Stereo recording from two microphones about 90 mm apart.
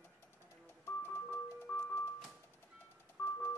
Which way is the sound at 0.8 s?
25° left (ahead or behind).